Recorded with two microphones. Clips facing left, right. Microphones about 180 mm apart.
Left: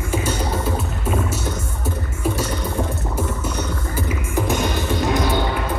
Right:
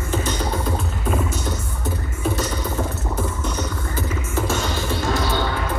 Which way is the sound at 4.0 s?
10° left (ahead or behind).